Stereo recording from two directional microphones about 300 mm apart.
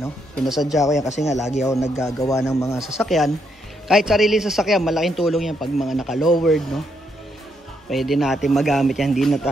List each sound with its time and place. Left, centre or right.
0.0 s a man's voice: centre
1.2 s speech: left
1.6 s a man's voice: centre
7.9 s a man's voice: centre